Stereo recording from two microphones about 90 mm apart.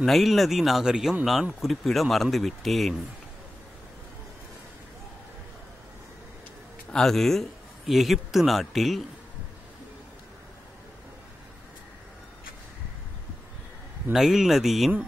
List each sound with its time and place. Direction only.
0.0 s speech: centre (ahead or behind)
6.9 s speech: 5° left (ahead or behind)
14.1 s speech: 5° right (ahead or behind)